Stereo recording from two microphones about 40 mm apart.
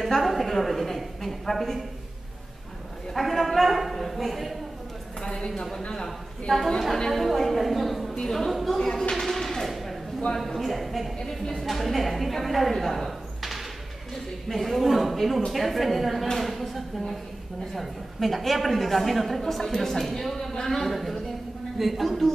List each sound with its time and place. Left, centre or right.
0.2 s a woman's voice: centre
3.2 s a woman's voice: centre
5.2 s a woman's voice: centre
7.1 s a woman's voice: centre
11.1 s a woman's voice: centre
11.6 s a woman's voice: centre